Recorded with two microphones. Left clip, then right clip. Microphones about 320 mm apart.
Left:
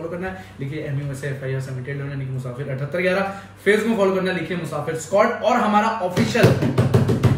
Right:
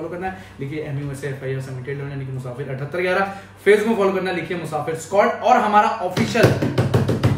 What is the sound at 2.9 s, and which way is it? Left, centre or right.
A man's voice, centre.